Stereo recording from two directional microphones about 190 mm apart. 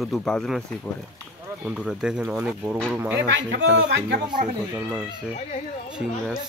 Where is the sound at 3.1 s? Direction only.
70° right (ahead or behind).